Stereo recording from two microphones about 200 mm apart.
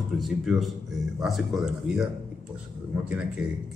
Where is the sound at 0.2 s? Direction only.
Centre (ahead or behind).